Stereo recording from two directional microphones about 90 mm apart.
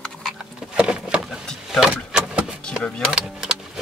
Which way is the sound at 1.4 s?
5° left (ahead or behind).